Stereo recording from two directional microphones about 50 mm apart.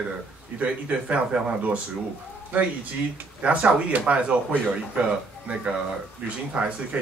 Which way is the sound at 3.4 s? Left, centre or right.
Right.